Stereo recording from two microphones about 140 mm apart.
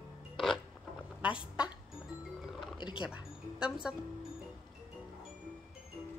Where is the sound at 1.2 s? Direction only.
5° right (ahead or behind).